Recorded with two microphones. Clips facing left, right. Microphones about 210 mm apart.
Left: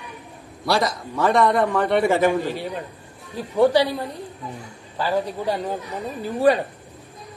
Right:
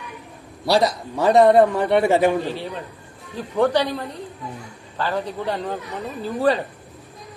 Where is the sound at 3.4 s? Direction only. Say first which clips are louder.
Left 2 dB; 10° left (ahead or behind).